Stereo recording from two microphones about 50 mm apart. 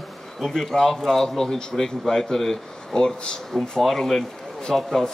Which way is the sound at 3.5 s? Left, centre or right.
Centre.